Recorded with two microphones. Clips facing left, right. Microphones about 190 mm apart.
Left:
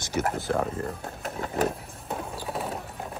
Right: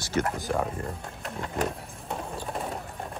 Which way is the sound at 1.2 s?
5° left (ahead or behind).